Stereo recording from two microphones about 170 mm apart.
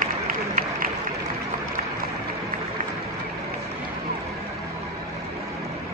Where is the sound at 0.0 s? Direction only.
55° right (ahead or behind).